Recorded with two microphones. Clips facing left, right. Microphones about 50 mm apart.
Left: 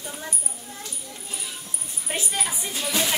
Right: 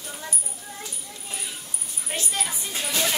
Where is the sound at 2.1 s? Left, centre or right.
Centre.